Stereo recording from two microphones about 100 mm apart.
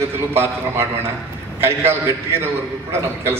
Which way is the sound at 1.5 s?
25° right (ahead or behind).